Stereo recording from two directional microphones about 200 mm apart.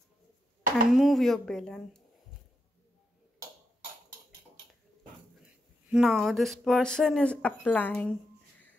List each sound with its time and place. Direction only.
0.8 s a woman's voice: centre (ahead or behind)
5.4 s speech: 5° right (ahead or behind)